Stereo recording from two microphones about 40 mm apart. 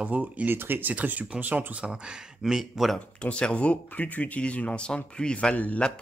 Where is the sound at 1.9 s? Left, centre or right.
Centre.